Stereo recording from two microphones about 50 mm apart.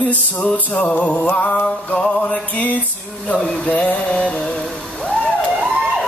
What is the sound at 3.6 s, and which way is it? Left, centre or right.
Music, left.